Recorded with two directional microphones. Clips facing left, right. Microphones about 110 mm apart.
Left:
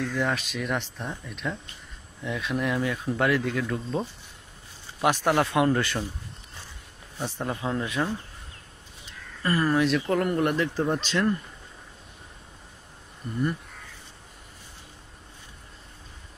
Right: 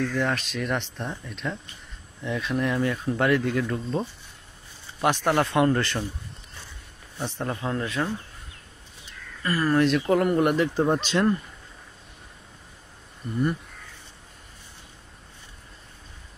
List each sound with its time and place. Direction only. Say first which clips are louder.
0.0 s speech: right 2 dB; 5° left (ahead or behind)
7.2 s speech: right 1 dB; 10° left (ahead or behind)
9.4 s speech: left 1 dB; 25° left (ahead or behind)
9.7 s speech: right 4 dB; centre (ahead or behind)
10.0 s speech: right 3 dB; 10° right (ahead or behind)